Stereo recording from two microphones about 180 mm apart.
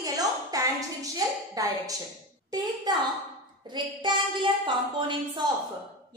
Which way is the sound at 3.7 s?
25° right (ahead or behind).